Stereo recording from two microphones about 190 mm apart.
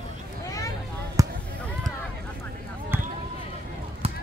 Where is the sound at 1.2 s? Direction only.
15° right (ahead or behind).